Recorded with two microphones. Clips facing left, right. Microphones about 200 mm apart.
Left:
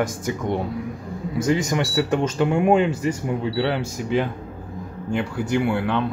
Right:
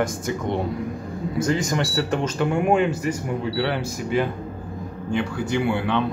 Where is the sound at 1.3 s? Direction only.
15° left (ahead or behind).